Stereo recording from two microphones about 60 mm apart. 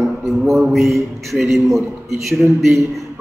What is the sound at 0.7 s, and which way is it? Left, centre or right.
A man's voice, centre.